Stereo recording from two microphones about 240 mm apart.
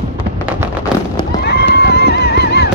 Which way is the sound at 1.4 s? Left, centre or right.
Left.